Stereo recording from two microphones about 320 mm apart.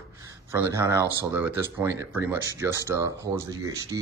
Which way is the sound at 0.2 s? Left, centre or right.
Centre.